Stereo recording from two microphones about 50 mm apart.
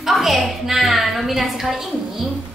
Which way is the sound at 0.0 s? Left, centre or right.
Centre.